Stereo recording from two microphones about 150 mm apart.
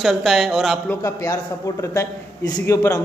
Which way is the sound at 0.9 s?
20° left (ahead or behind).